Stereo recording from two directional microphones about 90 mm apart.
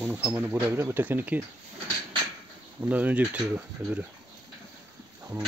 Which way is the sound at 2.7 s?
15° right (ahead or behind).